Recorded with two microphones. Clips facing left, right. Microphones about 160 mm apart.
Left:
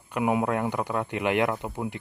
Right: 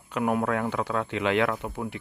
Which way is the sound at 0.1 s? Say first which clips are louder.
Left 1 dB; 10° left (ahead or behind).